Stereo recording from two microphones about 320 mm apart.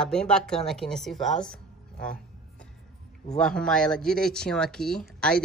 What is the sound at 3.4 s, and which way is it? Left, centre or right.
Speech, centre.